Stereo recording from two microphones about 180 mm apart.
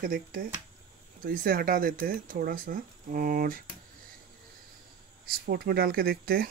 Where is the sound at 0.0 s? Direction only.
50° right (ahead or behind).